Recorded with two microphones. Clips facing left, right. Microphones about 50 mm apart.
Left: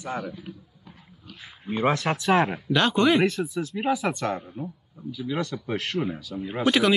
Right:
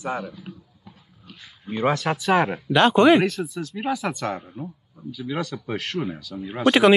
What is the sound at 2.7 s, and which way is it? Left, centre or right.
Speech, right.